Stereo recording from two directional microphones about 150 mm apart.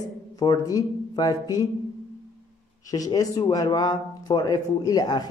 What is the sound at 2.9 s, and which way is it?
A woman's voice, 25° left (ahead or behind).